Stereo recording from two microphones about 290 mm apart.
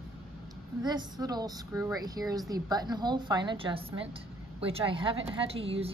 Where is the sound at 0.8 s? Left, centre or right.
Centre.